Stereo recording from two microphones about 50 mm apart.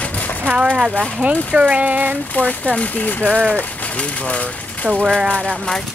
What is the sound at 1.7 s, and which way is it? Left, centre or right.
Speech, right.